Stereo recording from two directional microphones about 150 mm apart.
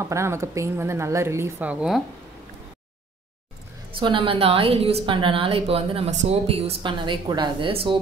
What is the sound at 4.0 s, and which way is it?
A woman's voice, 35° right (ahead or behind).